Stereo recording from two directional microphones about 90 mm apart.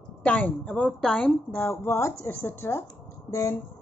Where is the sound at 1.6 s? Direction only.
30° left (ahead or behind).